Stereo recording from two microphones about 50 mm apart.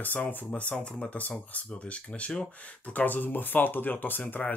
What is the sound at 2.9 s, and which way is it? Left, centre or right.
Speech, left.